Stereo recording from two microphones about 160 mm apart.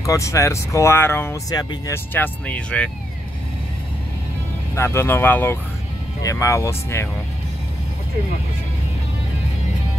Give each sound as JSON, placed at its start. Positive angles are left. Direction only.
{"t": 0.0, "sound": "speech", "side_deg": 20}
{"t": 2.1, "sound": "speech", "side_deg": 10}
{"t": 4.7, "sound": "speech", "side_deg": 15}